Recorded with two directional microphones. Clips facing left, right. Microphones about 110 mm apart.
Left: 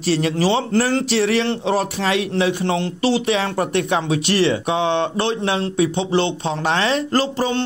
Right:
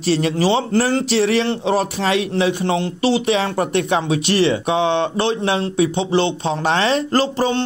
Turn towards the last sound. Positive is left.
turn(degrees=-30)  # may be behind; listen again after turning